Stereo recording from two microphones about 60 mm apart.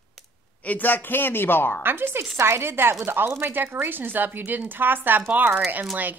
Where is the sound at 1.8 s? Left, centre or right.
Right.